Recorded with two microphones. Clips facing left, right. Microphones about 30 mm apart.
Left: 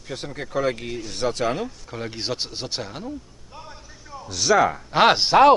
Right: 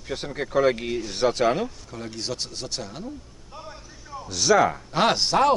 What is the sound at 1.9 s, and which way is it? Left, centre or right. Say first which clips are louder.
Speech: left 3 dB; left.